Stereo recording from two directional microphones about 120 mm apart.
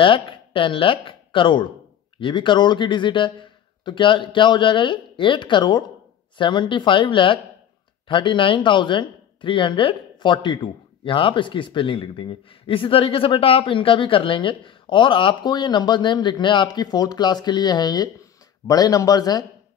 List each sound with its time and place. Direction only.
0.0 s speech: 45° left (ahead or behind)